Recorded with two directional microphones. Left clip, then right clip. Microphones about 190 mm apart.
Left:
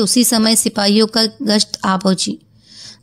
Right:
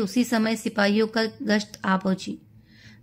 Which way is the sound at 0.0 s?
40° left (ahead or behind).